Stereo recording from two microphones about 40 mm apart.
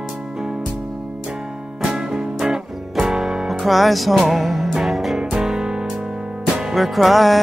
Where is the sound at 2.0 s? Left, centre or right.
Centre.